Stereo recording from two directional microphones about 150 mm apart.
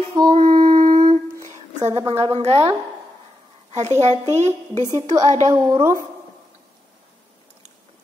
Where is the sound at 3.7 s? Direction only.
50° right (ahead or behind).